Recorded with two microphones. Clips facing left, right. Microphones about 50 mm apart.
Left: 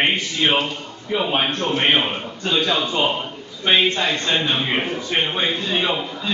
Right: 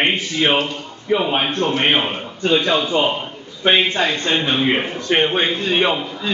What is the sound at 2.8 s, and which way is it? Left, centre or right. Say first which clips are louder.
Speech: right 3 dB; centre.